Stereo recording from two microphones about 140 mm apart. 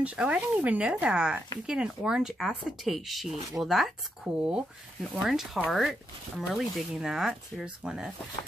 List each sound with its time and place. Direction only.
0.0 s speech: 10° right (ahead or behind)